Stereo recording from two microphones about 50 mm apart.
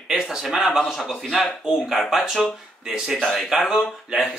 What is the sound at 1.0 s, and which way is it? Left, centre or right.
A man's voice, centre.